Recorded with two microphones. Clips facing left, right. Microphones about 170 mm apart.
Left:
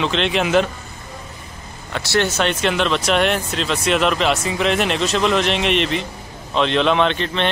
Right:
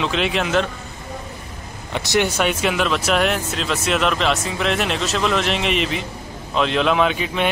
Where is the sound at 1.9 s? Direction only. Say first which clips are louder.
Even; 20° right (ahead or behind).